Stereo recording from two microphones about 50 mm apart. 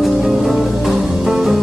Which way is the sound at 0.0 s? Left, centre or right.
Centre.